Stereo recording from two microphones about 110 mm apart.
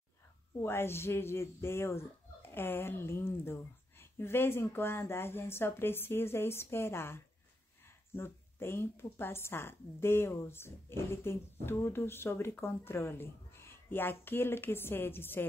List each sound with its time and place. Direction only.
0.6 s speech: 20° left (ahead or behind)